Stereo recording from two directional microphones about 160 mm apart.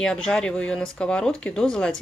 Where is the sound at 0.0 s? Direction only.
5° left (ahead or behind).